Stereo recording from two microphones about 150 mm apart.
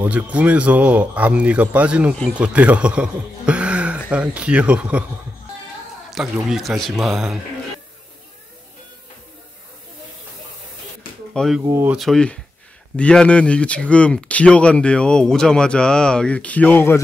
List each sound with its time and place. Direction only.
0.0 s a man's voice: 10° right (ahead or behind)
6.0 s a man's voice: centre (ahead or behind)
11.3 s a man's voice: centre (ahead or behind)
11.6 s speech: 20° right (ahead or behind)
11.9 s a man's voice: centre (ahead or behind)